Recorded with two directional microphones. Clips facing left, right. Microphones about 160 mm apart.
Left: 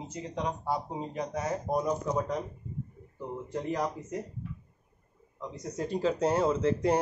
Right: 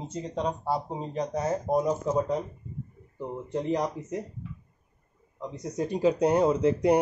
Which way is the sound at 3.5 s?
20° right (ahead or behind).